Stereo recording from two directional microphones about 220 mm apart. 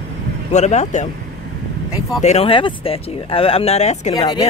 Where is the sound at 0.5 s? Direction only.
30° left (ahead or behind).